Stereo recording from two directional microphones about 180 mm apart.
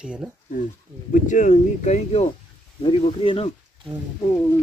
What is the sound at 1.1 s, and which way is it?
Speech, 45° left (ahead or behind).